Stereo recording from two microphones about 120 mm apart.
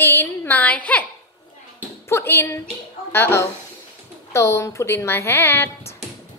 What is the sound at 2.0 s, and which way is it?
A woman's voice, 20° left (ahead or behind).